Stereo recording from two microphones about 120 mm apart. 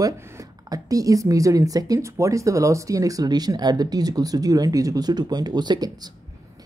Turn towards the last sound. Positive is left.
turn(degrees=-35)  # may be behind; listen again after turning